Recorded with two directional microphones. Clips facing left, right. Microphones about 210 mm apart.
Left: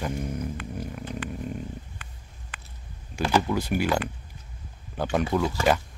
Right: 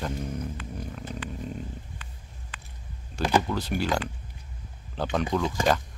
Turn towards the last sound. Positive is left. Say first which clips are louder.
# left 2 dB
turn(degrees=10)  # may be behind; listen again after turning